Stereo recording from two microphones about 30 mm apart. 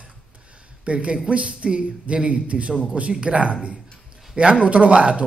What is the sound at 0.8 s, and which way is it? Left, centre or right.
A man's voice, right.